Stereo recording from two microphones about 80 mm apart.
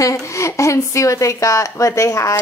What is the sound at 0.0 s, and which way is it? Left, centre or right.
Speech, left.